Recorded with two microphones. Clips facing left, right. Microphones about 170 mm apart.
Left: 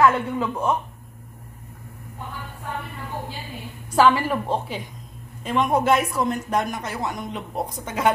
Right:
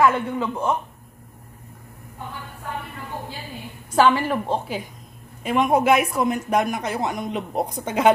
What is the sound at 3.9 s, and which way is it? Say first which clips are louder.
A woman's voice: even; centre (ahead or behind).